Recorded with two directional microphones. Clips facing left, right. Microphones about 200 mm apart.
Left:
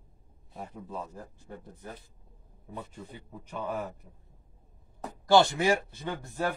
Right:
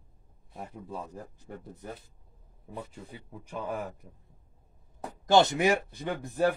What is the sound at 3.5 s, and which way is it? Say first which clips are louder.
Speech: even; 10° right (ahead or behind).